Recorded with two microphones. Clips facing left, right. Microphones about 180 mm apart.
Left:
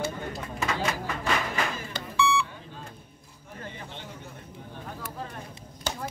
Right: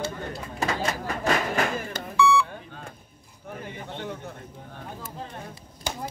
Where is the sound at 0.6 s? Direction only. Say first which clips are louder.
Right 2 dB; 45° right (ahead or behind).